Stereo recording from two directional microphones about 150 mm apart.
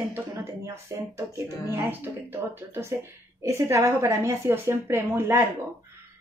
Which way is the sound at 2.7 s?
15° right (ahead or behind).